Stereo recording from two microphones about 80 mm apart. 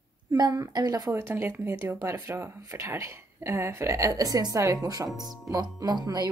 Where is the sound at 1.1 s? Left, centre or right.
Right.